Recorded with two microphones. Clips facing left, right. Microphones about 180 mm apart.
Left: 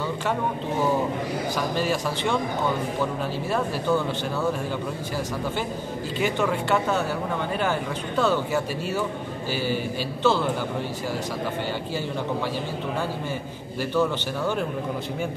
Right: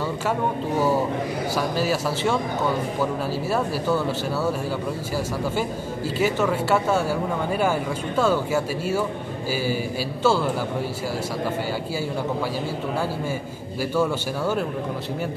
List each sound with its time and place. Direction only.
1.5 s speech: 5° right (ahead or behind)
6.1 s speech: 5° right (ahead or behind)
10.2 s speech: 10° right (ahead or behind)
13.9 s speech: 10° right (ahead or behind)